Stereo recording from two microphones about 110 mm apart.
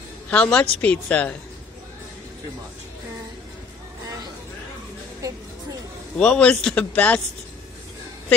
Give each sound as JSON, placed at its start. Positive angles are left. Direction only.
{"t": 0.3, "sound": "a woman's voice", "side_deg": 10}
{"t": 5.2, "sound": "a sound", "side_deg": -30}
{"t": 6.1, "sound": "a woman's voice", "side_deg": 10}